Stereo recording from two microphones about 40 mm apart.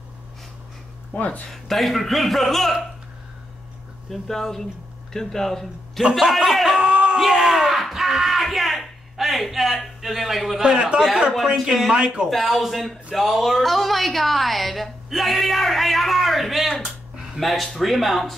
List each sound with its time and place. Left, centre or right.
1.1 s speech: left
1.5 s speech: centre
4.1 s speech: centre
6.3 s a sound: centre
6.8 s a sound: right
7.2 s yell: centre
7.9 s music: centre
8.4 s a sound: centre
10.6 s a man's voice: right
12.3 s speech: centre
16.8 s a sound: centre
17.4 s speech: centre